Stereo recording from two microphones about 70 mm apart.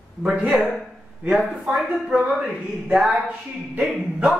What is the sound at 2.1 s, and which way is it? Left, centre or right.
Speech, centre.